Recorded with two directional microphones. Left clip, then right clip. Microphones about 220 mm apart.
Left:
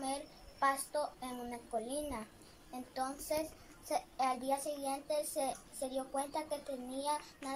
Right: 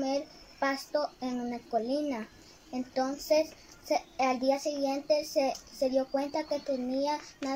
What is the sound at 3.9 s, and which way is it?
A child's voice, 30° right (ahead or behind).